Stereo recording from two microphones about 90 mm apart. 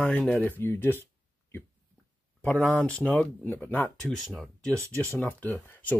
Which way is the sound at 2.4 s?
15° left (ahead or behind).